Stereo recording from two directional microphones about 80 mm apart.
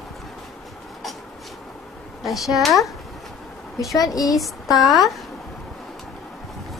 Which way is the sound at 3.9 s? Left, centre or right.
Left.